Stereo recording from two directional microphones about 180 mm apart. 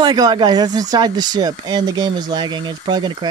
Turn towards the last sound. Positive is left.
turn(degrees=-25)  # may be behind; listen again after turning